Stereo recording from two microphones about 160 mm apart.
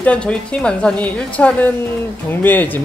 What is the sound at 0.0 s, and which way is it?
Speech, 5° left (ahead or behind).